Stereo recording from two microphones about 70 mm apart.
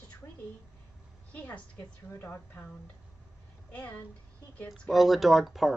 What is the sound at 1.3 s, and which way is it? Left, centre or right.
Speech, left.